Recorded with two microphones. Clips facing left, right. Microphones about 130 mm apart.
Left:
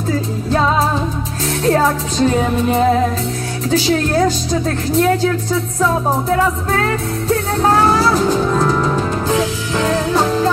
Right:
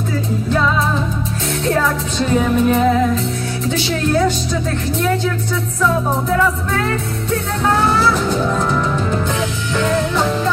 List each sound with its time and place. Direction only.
0.5 s music: 35° left (ahead or behind)
3.7 s speech: 35° left (ahead or behind)
6.7 s music: 35° left (ahead or behind)